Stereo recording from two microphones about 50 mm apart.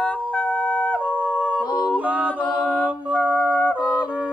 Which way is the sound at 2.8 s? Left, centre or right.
Right.